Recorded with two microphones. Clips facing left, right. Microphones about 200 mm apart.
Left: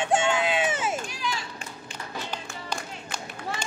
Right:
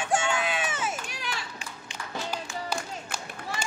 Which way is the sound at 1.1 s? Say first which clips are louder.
Left 4 dB; 60° right (ahead or behind).